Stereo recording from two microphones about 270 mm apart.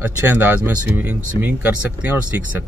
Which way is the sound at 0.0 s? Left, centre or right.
Centre.